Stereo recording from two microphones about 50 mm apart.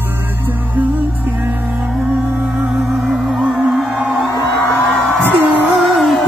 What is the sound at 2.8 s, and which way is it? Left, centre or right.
Music, centre.